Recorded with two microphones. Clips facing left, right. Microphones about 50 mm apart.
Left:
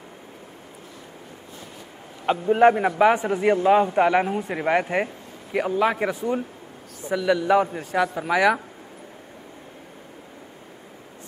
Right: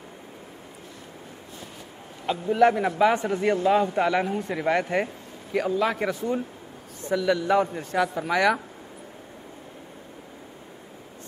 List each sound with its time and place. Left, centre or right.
2.2 s a man's voice: left; by 8.6 s centre